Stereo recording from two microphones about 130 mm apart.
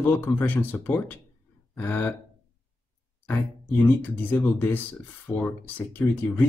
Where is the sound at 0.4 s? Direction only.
15° left (ahead or behind).